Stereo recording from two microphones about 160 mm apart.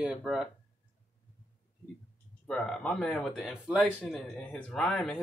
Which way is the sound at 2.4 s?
5° left (ahead or behind).